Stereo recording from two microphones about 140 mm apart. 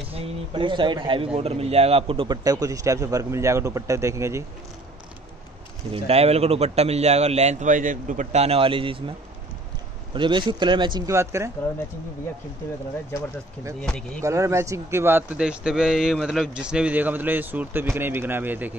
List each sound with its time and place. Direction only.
0.1 s speech: 40° right (ahead or behind); by 4.5 s 20° right (ahead or behind)
5.9 s a man's voice: 45° right (ahead or behind)
10.1 s speech: 35° right (ahead or behind)
13.7 s speech: 5° left (ahead or behind)
14.2 s a man's voice: 20° right (ahead or behind)